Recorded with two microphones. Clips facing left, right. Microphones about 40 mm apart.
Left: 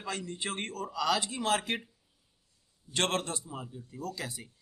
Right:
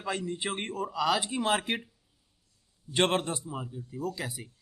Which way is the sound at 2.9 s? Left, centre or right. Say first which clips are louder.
Right 4 dB; centre.